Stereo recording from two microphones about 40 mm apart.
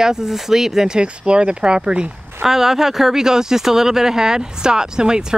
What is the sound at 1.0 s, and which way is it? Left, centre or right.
Speech, right.